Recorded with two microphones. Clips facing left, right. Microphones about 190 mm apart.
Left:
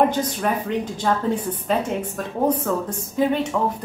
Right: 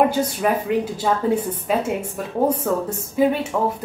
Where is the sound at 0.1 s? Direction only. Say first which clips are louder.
Right 2 dB; 5° right (ahead or behind).